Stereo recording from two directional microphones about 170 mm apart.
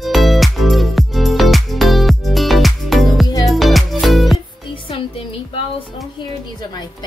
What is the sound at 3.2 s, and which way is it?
Music, 20° left (ahead or behind).